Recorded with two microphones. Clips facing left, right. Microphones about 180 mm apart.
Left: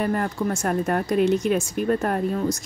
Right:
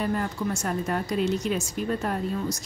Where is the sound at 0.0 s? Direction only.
55° left (ahead or behind).